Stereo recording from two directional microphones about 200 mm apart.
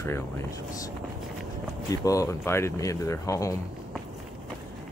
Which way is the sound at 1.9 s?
15° left (ahead or behind).